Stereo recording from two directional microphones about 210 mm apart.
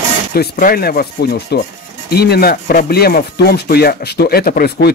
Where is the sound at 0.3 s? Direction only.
45° left (ahead or behind).